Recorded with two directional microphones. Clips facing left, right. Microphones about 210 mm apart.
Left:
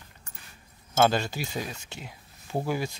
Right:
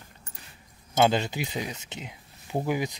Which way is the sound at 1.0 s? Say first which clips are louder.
Right 1 dB; 20° right (ahead or behind).